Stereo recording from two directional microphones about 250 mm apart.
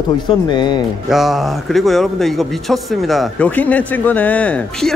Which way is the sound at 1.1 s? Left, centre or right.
Centre.